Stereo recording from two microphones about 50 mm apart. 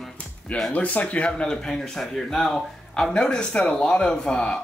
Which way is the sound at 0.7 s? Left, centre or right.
Left.